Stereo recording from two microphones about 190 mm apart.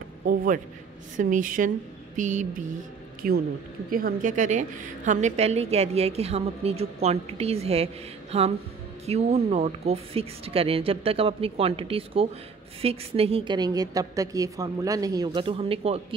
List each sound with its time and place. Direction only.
1.1 s a woman's voice: 45° right (ahead or behind)
3.2 s a woman's voice: 50° right (ahead or behind); by 16.2 s 30° right (ahead or behind)